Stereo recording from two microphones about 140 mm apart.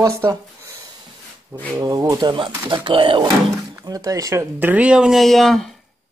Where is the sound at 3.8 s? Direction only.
25° right (ahead or behind); by 5.7 s centre (ahead or behind).